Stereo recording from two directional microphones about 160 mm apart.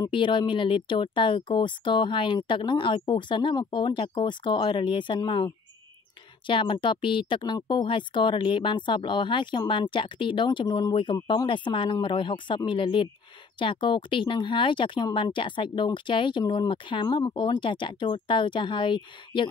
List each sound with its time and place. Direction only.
0.0 s speech: 30° left (ahead or behind)